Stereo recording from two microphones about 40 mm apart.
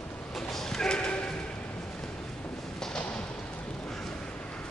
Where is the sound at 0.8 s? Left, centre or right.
Left.